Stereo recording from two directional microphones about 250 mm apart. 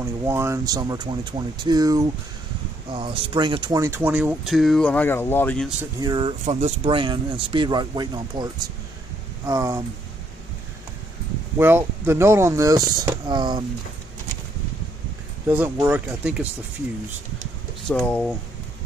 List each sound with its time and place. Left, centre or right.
0.0 s speech: centre
5.8 s speech: centre
9.5 s speech: centre
11.5 s speech: centre
15.4 s speech: centre
17.8 s speech: centre